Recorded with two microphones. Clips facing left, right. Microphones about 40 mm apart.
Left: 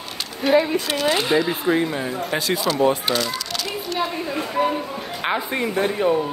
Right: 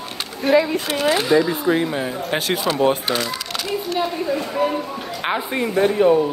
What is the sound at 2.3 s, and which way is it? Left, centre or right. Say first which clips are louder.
Speech: right 1 dB; right.